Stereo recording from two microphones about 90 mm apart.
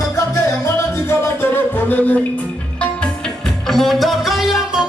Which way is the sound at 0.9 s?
30° left (ahead or behind).